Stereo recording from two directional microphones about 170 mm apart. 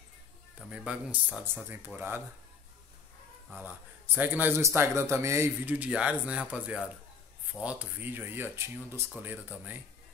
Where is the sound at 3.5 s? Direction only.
10° right (ahead or behind).